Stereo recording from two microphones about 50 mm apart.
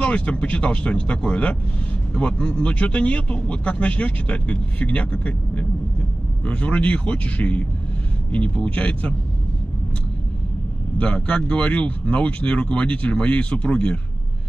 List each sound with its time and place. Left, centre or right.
0.0 s speech: left
11.0 s speech: left